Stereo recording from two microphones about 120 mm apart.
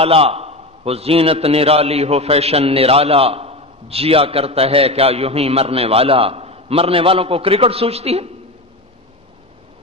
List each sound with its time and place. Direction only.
0.0 s a man's voice: 55° right (ahead or behind)